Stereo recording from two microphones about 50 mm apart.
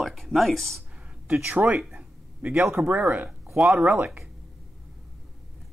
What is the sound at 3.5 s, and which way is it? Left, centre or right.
Speech, centre.